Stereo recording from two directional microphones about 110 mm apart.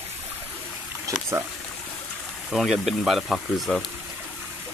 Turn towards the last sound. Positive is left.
turn(degrees=0)  # may be behind; listen again after turning